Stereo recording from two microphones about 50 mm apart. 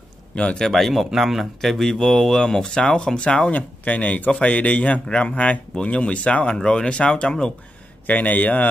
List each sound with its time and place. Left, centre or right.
0.3 s a man's voice: left
0.6 s speech: centre
3.5 s a man's voice: left
8.1 s a man's voice: left